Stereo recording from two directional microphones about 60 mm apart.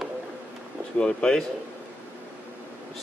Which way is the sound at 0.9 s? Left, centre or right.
Centre.